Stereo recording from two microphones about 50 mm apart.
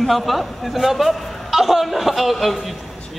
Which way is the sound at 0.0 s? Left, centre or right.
Centre.